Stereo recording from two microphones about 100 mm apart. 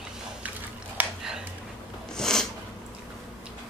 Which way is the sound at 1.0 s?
15° right (ahead or behind).